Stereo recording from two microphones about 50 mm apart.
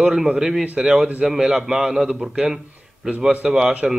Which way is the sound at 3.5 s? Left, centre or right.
Centre.